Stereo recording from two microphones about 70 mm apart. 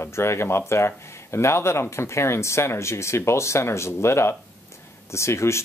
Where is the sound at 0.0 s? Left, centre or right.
Left.